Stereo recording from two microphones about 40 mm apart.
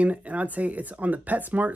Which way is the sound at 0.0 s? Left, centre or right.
Right.